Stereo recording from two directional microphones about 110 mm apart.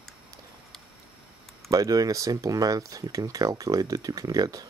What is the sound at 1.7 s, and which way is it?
Speech, 35° right (ahead or behind).